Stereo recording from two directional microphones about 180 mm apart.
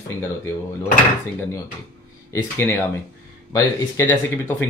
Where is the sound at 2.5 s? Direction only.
15° left (ahead or behind).